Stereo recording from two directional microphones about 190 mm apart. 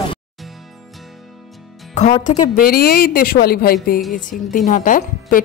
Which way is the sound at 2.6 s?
50° left (ahead or behind).